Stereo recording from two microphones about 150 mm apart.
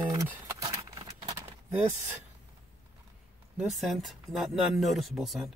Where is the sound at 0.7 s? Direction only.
25° right (ahead or behind).